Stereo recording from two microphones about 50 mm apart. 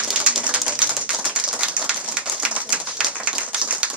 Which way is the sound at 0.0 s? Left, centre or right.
Centre.